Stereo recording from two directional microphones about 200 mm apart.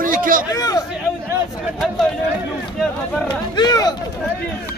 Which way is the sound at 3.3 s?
20° left (ahead or behind).